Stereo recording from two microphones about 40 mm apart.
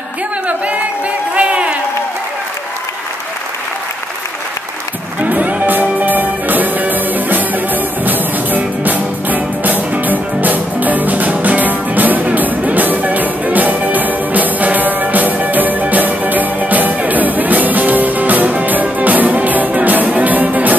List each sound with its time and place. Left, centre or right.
0.5 s music: right
1.3 s a sound: right
5.2 s music: right